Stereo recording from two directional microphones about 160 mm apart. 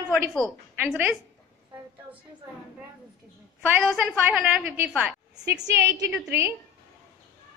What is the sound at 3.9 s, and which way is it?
A woman's voice, 10° right (ahead or behind).